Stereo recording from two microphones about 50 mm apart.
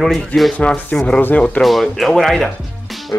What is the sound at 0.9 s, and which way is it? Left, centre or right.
Speech, left.